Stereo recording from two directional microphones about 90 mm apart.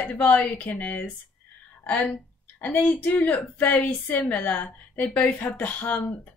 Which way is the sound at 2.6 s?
15° left (ahead or behind).